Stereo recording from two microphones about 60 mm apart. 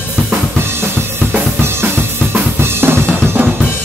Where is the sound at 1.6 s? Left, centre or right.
Right.